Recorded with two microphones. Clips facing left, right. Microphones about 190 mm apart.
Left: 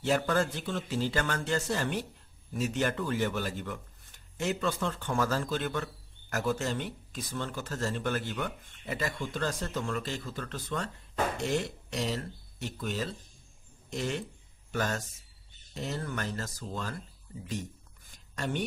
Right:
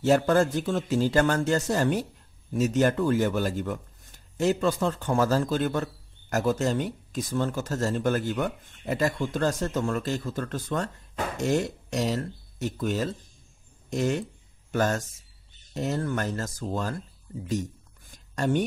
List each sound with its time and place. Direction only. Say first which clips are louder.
0.0 s speech: right 7 dB; 45° right (ahead or behind)
18.3 s speech: right 8 dB; 45° right (ahead or behind)